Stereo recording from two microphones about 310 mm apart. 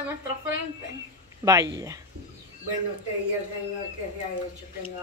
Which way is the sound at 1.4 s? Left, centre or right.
Centre.